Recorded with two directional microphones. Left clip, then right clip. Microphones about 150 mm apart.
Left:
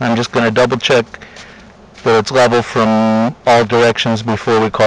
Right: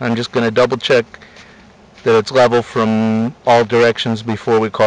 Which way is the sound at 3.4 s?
10° left (ahead or behind).